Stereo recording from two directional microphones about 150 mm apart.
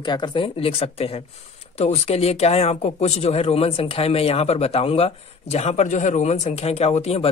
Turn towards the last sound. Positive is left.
turn(degrees=45)  # may be behind; listen again after turning